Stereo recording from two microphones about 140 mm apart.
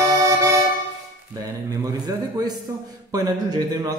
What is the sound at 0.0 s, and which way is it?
Accordion, 20° right (ahead or behind).